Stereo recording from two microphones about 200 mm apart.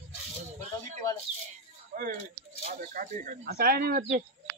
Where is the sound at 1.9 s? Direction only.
45° right (ahead or behind).